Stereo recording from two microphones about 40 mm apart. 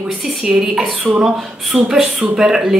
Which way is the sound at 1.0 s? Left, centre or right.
Right.